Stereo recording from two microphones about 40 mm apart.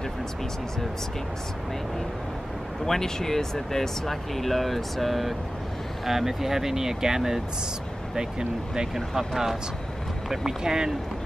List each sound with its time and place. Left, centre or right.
2.8 s speech: centre
8.9 s speech: centre